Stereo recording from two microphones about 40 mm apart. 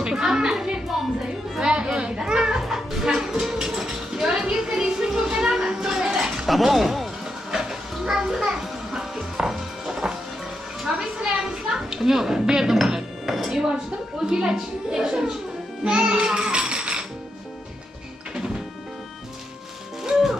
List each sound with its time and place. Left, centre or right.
0.0 s a child's voice: centre
0.8 s a sound: centre
1.6 s children playing: right
2.6 s a sound: centre
6.5 s speech: centre
7.5 s music: centre
10.9 s a sound: centre
13.5 s a woman's voice: centre
15.8 s music: right